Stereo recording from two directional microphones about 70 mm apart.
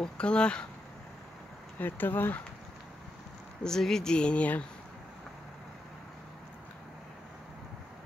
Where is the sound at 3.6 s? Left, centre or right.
Centre.